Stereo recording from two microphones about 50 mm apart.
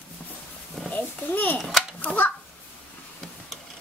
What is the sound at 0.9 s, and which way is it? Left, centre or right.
Speech, left.